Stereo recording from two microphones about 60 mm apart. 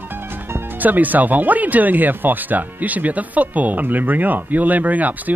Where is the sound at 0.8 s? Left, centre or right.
Right.